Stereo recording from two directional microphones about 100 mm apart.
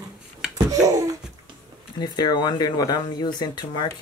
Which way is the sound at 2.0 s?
40° left (ahead or behind).